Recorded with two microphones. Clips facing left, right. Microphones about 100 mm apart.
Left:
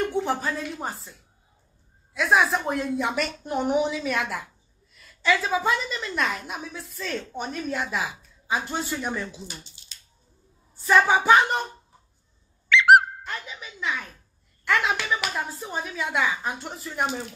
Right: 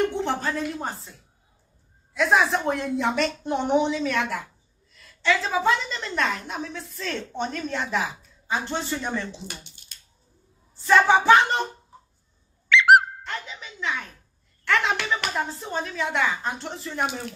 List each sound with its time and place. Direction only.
0.1 s speech: 5° left (ahead or behind)
2.1 s a woman's voice: centre (ahead or behind)
9.5 s a sound: 65° right (ahead or behind)
10.9 s speech: 10° left (ahead or behind)
13.2 s a sound: 5° left (ahead or behind)
14.6 s speech: 5° left (ahead or behind)